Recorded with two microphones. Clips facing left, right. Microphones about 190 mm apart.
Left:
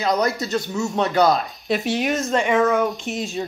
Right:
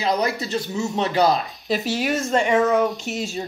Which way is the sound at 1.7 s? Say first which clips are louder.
Left 1 dB; 5° right (ahead or behind).